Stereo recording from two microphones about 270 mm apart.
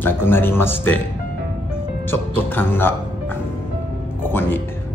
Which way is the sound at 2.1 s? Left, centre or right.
Centre.